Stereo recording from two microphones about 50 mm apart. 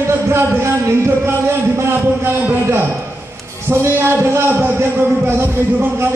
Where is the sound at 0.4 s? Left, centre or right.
Right.